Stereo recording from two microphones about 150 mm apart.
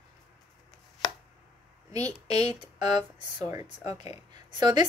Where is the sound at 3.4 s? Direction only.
25° right (ahead or behind).